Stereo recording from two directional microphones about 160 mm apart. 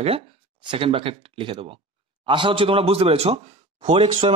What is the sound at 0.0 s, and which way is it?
A man's voice, 35° right (ahead or behind).